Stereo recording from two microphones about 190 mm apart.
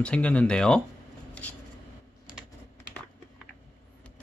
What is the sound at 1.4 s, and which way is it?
Writing, 5° left (ahead or behind).